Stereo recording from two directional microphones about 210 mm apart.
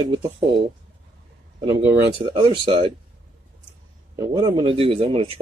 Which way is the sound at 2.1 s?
25° right (ahead or behind).